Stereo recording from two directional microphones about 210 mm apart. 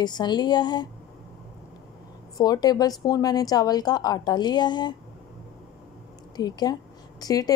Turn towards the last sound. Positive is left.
turn(degrees=15)  # may be behind; listen again after turning